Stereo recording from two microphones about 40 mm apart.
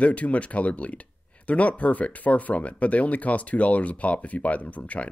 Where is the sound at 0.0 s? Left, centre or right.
Left.